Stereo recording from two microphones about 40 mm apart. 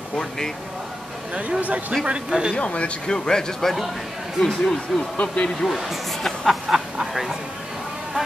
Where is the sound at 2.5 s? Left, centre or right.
Left.